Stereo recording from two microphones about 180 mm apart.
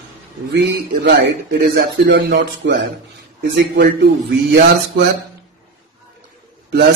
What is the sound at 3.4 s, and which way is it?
Music, 60° right (ahead or behind).